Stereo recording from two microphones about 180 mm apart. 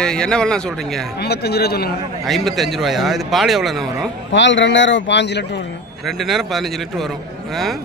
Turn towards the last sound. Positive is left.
turn(degrees=0)  # may be behind; listen again after turning